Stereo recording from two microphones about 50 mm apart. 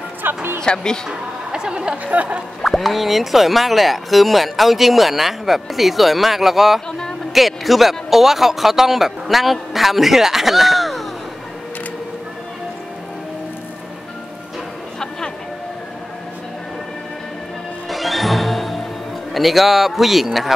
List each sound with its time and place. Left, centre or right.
0.2 s music: right
0.6 s speech: centre
1.0 s music: centre
2.0 s speech: right
2.6 s speech: centre
15.0 s music: centre
17.8 s music: centre
19.3 s speech: centre